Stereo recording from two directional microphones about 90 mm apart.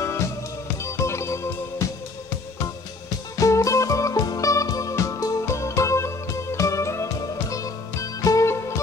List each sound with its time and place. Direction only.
0.8 s music: 30° left (ahead or behind)
3.3 s music: 35° left (ahead or behind)